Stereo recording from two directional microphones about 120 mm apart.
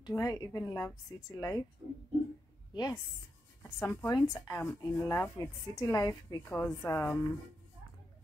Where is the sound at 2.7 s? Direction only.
30° left (ahead or behind).